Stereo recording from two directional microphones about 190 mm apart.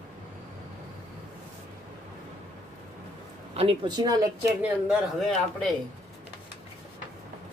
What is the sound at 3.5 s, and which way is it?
Speech, 30° right (ahead or behind).